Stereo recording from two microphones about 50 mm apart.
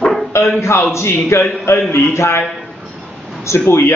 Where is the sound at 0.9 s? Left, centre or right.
Left.